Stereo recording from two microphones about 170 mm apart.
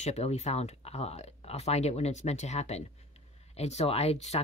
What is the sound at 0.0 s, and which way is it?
Speech, 40° left (ahead or behind).